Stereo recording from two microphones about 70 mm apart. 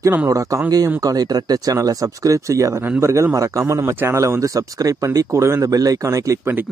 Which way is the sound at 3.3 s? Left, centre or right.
Right.